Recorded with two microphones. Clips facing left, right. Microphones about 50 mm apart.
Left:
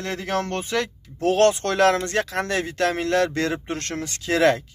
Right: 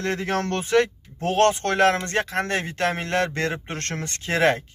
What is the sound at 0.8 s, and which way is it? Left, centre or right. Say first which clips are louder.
Speech: right 2 dB; right.